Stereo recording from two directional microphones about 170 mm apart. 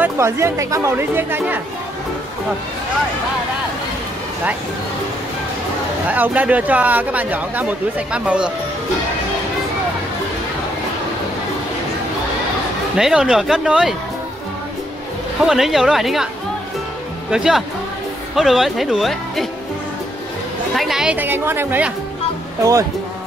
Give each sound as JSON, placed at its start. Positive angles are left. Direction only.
{"t": 0.0, "sound": "speech", "side_deg": -15}
{"t": 6.0, "sound": "speech", "side_deg": -10}
{"t": 12.9, "sound": "speech", "side_deg": -5}
{"t": 15.4, "sound": "speech", "side_deg": 0}
{"t": 17.3, "sound": "speech", "side_deg": -5}
{"t": 20.7, "sound": "speech", "side_deg": 0}